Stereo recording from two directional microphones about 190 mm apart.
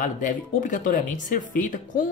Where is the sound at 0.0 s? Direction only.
45° left (ahead or behind).